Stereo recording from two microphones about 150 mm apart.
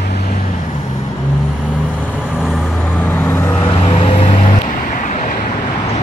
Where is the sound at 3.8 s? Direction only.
40° left (ahead or behind).